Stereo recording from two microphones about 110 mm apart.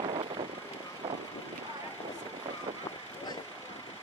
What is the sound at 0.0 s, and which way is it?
Vehicle, 55° right (ahead or behind).